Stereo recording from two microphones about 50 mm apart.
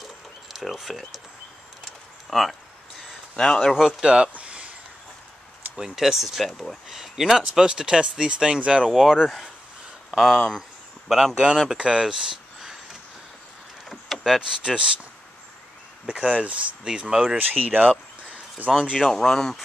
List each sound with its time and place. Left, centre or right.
0.0 s a sound: centre
2.2 s speech: centre
3.3 s speech: centre
3.7 s speech: centre
4.0 s speech: centre
4.3 s a sound: right
5.8 s speech: centre
8.9 s speech: centre
11.7 s speech: centre
13.8 s vehicle: centre
14.2 s speech: centre
16.1 s speech: centre
17.4 s speech: right
19.0 s speech: centre